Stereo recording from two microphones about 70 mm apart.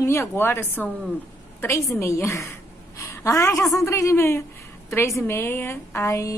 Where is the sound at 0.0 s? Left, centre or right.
Left.